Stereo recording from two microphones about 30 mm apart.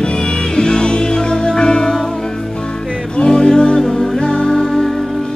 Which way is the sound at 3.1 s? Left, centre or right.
Left.